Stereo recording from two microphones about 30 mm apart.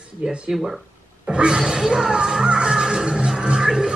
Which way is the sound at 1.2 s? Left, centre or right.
Right.